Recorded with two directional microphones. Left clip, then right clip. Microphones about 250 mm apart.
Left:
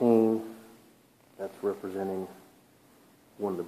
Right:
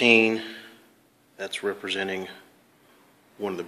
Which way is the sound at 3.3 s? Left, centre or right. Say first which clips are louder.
Right 2 dB; right.